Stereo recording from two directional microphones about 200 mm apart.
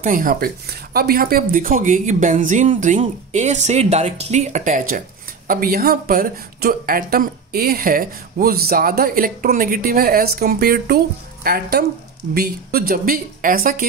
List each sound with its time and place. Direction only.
0.0 s speech: 45° right (ahead or behind)